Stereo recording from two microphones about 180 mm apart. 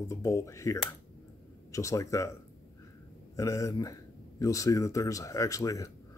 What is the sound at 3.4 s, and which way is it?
Speech, 20° left (ahead or behind).